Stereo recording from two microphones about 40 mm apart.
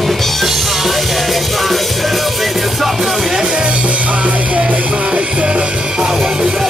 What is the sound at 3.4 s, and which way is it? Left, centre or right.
Music, right.